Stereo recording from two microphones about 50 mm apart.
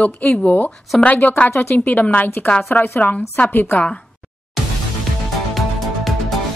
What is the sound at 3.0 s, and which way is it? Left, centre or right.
Speech, left.